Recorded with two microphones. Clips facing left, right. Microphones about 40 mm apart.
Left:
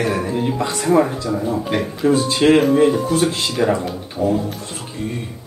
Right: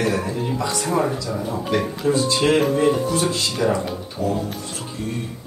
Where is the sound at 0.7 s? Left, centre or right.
Centre.